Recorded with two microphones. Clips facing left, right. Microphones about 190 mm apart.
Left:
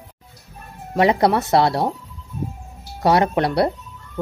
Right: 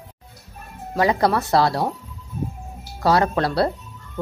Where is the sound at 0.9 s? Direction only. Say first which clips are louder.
Left 3 dB; 25° left (ahead or behind).